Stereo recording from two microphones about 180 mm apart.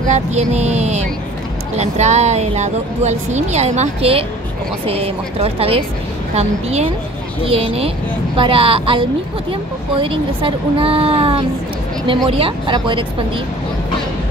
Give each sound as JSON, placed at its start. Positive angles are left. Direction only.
{"t": 0.1, "sound": "speech", "side_deg": -40}